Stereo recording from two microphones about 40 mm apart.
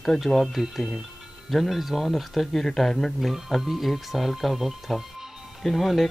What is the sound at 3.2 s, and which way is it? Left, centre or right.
Speech, centre.